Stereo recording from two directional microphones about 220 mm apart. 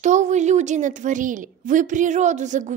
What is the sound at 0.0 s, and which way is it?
A woman's voice, 35° right (ahead or behind).